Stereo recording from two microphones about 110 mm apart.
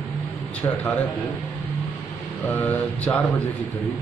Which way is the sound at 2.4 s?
15° left (ahead or behind).